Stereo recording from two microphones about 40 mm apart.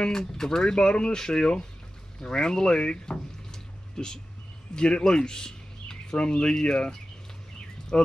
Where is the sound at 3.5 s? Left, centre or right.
Centre.